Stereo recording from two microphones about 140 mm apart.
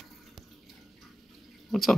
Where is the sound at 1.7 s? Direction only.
Centre (ahead or behind).